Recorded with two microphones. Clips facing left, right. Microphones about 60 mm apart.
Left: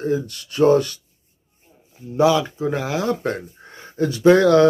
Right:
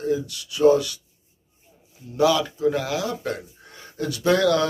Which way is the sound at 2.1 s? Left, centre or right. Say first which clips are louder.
Left 3 dB; left.